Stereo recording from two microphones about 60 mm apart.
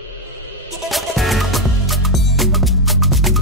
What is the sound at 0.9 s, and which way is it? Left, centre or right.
Music, centre.